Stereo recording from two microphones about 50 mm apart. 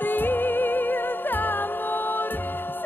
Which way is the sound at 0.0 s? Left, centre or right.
Left.